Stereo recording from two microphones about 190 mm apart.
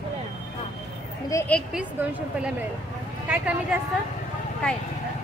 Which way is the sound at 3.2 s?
10° right (ahead or behind).